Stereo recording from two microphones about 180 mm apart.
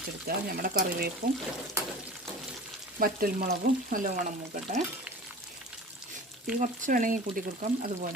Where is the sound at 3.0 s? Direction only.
55° right (ahead or behind).